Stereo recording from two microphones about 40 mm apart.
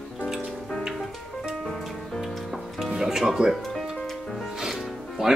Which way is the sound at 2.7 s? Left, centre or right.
Centre.